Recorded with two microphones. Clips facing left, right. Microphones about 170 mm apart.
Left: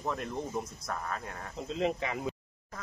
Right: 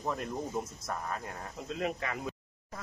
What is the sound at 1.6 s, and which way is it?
Speech, 25° left (ahead or behind).